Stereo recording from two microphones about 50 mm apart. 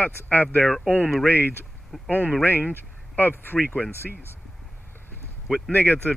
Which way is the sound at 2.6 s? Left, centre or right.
Left.